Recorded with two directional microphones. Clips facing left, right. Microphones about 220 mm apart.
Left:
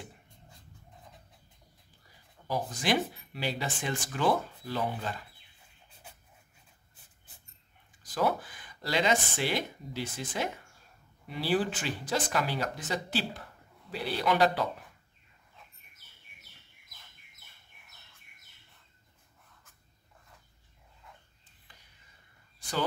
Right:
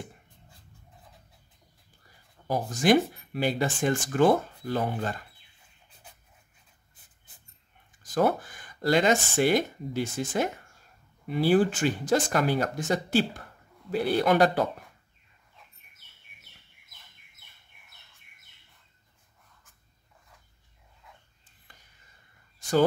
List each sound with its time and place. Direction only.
2.4 s speech: 50° right (ahead or behind)
8.0 s speech: 50° right (ahead or behind)
22.6 s a sound: 45° right (ahead or behind)